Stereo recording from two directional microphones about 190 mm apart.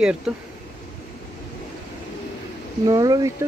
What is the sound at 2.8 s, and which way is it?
Speech, 20° right (ahead or behind).